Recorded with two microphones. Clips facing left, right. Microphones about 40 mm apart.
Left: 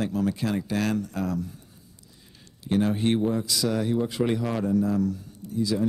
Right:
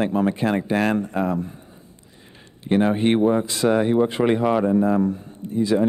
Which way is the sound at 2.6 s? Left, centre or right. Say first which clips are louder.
Right 5 dB; right.